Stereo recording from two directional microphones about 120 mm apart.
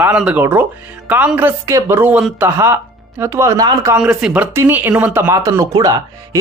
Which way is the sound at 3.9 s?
5° right (ahead or behind).